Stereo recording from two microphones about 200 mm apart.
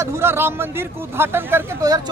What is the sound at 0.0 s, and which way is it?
Speech, 10° right (ahead or behind).